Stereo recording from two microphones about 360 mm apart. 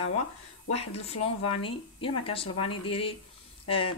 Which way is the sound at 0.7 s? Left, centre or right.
Centre.